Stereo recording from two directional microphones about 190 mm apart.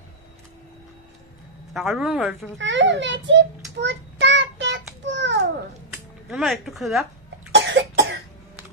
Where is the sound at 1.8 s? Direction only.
Centre (ahead or behind).